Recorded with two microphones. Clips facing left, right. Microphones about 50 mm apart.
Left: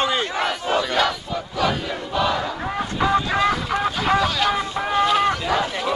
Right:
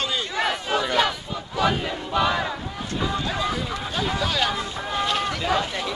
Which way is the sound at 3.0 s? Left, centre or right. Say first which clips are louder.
Left 7 dB; left.